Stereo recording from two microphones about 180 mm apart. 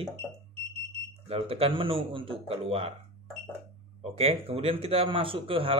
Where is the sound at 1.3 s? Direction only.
30° right (ahead or behind).